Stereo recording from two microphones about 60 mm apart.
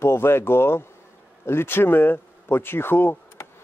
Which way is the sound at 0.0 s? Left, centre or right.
Left.